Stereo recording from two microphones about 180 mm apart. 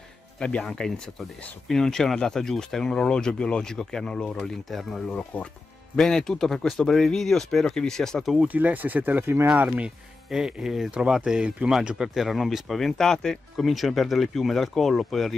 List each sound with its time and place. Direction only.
0.4 s speech: 5° left (ahead or behind)